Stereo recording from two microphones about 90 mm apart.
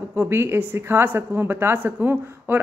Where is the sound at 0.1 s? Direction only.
25° right (ahead or behind).